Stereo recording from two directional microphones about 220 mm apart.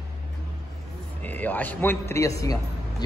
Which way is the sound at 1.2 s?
5° left (ahead or behind).